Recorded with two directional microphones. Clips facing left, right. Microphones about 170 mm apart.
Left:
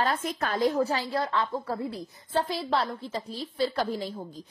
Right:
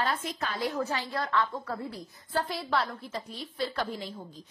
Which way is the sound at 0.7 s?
35° left (ahead or behind).